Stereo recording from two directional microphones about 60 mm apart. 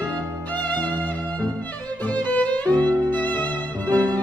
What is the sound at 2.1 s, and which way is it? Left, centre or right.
Music, left.